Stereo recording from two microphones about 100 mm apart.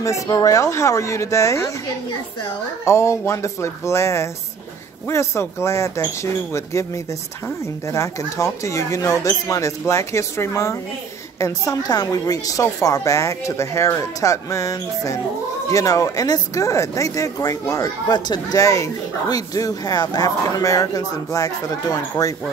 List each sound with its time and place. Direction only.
0.0 s speech: 35° left (ahead or behind)
2.8 s speech: 30° left (ahead or behind)